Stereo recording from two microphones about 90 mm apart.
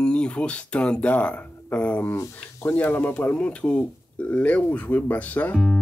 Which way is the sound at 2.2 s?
35° left (ahead or behind).